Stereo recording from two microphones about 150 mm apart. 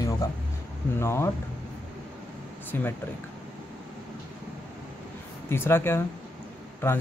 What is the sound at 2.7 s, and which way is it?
Speech, 15° left (ahead or behind).